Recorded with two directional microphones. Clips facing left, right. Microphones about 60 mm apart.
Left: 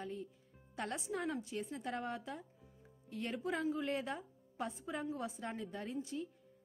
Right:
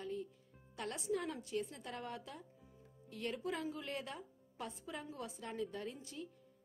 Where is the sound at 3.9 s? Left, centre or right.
Left.